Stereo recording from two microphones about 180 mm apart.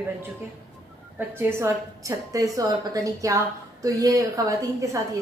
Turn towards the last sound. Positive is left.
turn(degrees=-20)  # may be behind; listen again after turning